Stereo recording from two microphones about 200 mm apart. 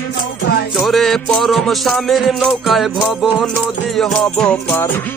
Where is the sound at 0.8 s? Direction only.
Centre (ahead or behind).